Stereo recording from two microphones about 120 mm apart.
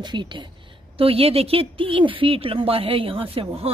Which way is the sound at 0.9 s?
50° right (ahead or behind).